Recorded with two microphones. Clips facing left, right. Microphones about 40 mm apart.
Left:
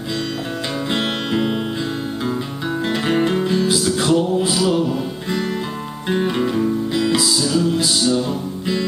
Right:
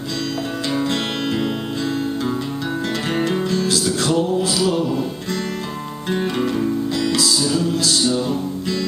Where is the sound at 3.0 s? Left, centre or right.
Centre.